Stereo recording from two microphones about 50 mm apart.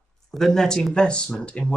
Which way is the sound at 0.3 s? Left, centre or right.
Centre.